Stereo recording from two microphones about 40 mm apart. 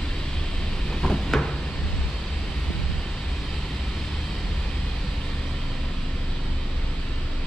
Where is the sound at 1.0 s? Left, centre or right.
Centre.